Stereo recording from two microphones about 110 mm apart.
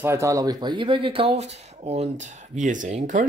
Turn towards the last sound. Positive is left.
turn(degrees=-85)